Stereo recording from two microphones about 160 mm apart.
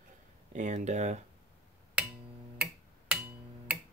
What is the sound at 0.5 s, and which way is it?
Speech, 45° right (ahead or behind).